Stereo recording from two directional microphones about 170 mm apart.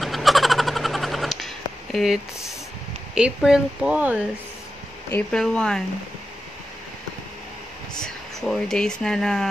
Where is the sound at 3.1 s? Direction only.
5° right (ahead or behind).